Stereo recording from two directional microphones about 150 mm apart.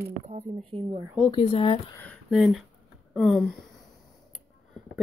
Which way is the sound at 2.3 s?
Centre (ahead or behind).